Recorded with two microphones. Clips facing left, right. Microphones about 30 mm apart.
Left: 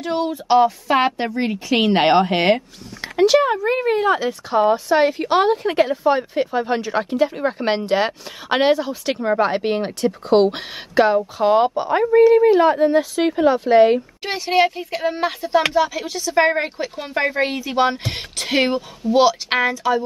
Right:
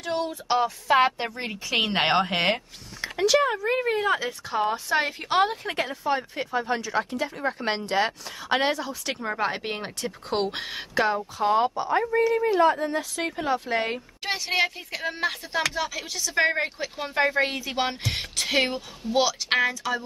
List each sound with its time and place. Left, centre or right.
0.0 s speech: centre
3.0 s a sound: left
3.3 s speech: centre
11.4 s speech: left